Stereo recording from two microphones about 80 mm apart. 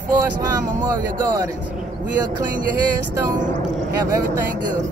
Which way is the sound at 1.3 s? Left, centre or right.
Right.